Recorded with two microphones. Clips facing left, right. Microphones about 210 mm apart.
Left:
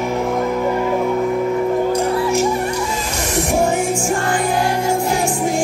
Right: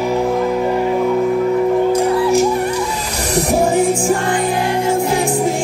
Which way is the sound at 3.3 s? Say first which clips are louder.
Right 3 dB; 35° right (ahead or behind).